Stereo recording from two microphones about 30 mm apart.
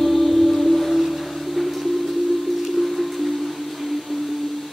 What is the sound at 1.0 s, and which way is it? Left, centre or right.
Music, centre.